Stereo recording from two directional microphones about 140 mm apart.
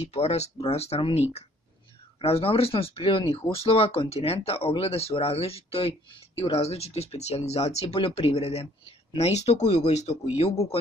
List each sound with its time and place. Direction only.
0.0 s speech: 50° left (ahead or behind)